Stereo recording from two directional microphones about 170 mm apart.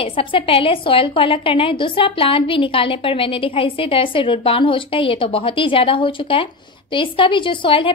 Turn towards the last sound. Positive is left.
turn(degrees=30)  # may be behind; listen again after turning